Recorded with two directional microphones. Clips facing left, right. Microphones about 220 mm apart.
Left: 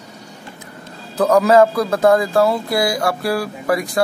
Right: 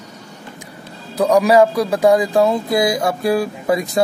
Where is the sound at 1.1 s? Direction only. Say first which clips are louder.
Even; 15° right (ahead or behind).